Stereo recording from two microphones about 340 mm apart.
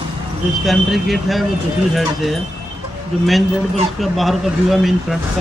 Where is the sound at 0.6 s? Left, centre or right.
Centre.